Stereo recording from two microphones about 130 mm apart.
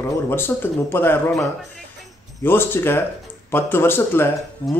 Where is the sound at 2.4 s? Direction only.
15° left (ahead or behind).